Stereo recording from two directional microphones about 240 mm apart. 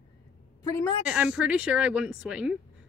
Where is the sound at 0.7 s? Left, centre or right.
Centre.